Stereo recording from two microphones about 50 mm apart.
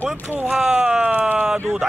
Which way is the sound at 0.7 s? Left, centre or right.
Centre.